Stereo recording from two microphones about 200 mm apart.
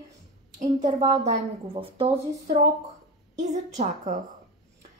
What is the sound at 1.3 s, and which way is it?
Speech, 30° right (ahead or behind).